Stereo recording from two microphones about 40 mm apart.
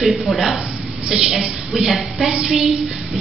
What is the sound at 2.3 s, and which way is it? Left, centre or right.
Speech, centre.